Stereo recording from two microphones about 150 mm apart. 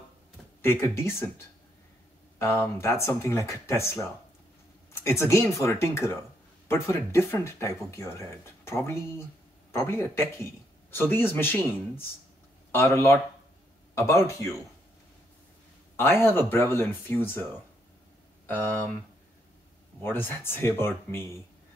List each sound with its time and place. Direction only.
0.6 s a man's voice: 15° left (ahead or behind)
2.3 s a man's voice: 15° left (ahead or behind)
16.0 s a man's voice: 15° left (ahead or behind)
18.5 s a man's voice: 10° left (ahead or behind)
20.0 s a man's voice: 15° left (ahead or behind)